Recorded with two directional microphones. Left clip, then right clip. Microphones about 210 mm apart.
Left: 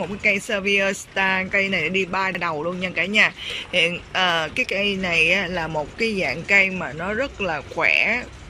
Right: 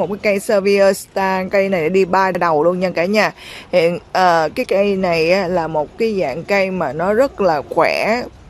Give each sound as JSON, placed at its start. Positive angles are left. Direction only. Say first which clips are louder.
{"t": 0.0, "sound": "speech", "louder": "right 4 dB", "side_deg": -20}